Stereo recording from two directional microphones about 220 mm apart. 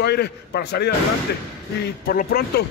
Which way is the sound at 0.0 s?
50° left (ahead or behind).